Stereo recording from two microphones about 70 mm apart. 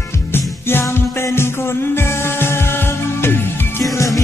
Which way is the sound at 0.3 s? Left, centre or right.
Left.